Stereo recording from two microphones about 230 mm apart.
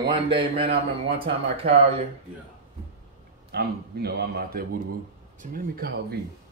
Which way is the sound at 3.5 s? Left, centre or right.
Right.